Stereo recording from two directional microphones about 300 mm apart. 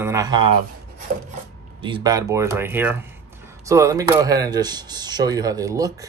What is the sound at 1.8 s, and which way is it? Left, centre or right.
Speech, centre.